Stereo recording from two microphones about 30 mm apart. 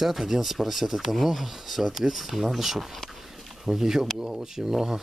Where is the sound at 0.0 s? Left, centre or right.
Centre.